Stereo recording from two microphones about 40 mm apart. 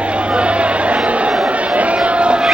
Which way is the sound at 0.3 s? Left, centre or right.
Right.